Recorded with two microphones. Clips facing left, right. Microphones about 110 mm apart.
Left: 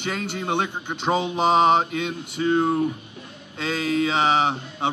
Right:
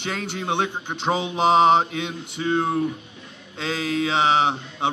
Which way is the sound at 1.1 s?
15° right (ahead or behind).